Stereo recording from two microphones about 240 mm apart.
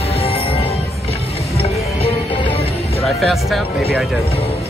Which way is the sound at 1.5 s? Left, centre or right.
Left.